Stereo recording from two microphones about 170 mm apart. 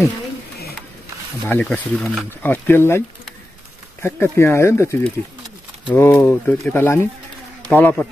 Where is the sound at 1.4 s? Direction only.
5° left (ahead or behind).